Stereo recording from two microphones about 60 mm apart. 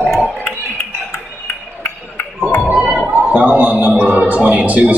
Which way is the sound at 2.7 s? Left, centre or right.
Centre.